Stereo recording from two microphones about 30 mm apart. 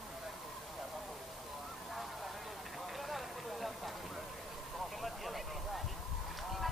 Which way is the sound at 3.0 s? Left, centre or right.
Centre.